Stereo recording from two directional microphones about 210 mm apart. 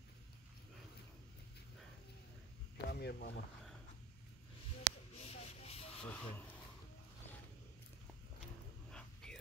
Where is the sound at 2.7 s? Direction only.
50° left (ahead or behind).